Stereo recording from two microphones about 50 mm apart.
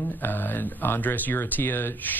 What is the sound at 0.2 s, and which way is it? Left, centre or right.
Speech, left.